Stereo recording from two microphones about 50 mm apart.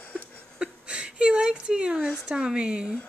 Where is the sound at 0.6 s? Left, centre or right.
Centre.